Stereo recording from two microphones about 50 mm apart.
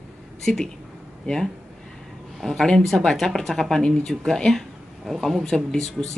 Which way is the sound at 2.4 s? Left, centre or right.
Centre.